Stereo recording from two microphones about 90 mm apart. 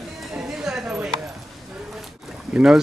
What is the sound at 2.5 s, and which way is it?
Speech, 15° right (ahead or behind).